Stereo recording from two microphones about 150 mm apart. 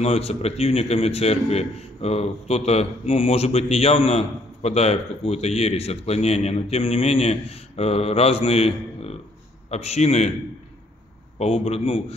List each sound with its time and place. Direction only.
0.0 s speech: 45° left (ahead or behind)
11.3 s a man's voice: 40° left (ahead or behind)